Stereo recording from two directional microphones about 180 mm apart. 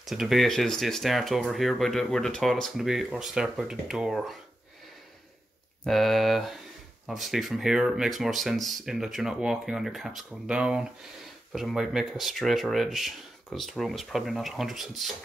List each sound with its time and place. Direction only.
0.0 s speech: centre (ahead or behind)
5.9 s speech: centre (ahead or behind)